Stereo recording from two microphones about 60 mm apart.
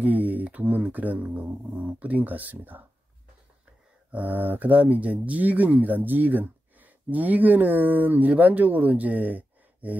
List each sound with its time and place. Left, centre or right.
0.0 s speech: right
4.1 s speech: right